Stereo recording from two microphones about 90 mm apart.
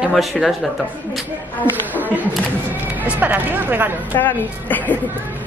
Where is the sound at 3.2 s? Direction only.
20° right (ahead or behind).